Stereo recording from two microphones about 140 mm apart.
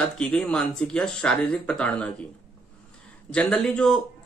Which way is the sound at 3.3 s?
5° left (ahead or behind).